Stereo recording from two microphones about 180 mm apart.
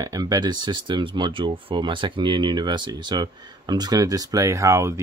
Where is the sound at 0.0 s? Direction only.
20° right (ahead or behind).